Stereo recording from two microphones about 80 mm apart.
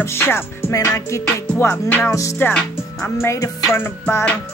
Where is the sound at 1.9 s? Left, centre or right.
Centre; by 3.7 s left.